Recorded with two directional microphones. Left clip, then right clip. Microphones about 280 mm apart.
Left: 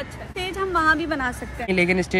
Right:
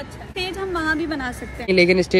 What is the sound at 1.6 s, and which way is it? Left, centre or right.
Speech, centre.